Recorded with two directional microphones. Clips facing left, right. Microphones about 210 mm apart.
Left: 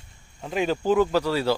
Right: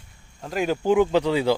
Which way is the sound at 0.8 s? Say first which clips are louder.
Right 3 dB; 15° right (ahead or behind).